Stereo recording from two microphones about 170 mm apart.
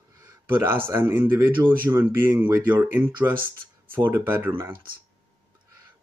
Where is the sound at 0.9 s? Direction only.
15° right (ahead or behind).